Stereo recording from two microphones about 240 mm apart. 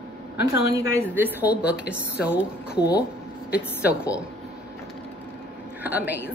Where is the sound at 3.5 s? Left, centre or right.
Centre.